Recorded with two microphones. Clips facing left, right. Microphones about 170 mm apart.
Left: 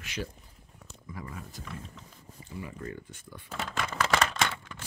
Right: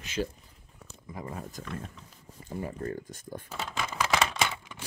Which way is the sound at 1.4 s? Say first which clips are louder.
Right 4 dB; 45° right (ahead or behind).